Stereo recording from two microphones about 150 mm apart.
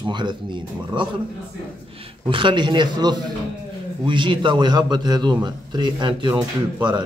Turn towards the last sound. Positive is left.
turn(degrees=-30)  # may be behind; listen again after turning